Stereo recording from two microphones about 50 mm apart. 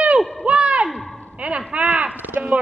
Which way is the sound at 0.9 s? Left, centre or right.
Centre.